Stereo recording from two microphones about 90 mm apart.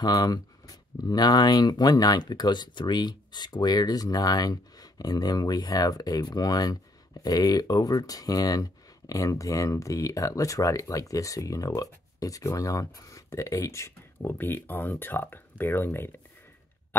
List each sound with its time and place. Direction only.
0.0 s speech: 50° left (ahead or behind); by 16.2 s 25° left (ahead or behind)